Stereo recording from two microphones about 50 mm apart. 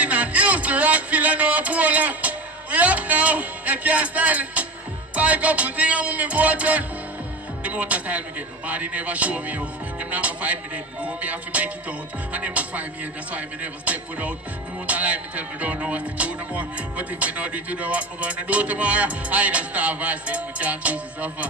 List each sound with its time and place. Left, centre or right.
0.0 s music: right